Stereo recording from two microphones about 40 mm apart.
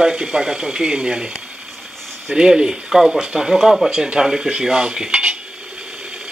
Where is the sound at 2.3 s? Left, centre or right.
Centre.